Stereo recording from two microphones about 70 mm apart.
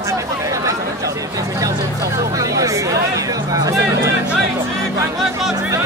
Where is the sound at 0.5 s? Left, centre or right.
Right.